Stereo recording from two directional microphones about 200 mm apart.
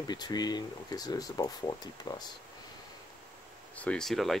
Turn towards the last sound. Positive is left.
turn(degrees=0)  # may be behind; listen again after turning